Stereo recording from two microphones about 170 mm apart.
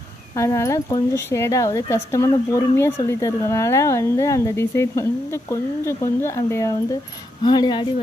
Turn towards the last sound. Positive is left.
turn(degrees=25)  # may be behind; listen again after turning